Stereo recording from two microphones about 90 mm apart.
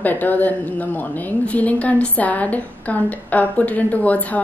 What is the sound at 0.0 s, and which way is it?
A woman's voice, 20° left (ahead or behind).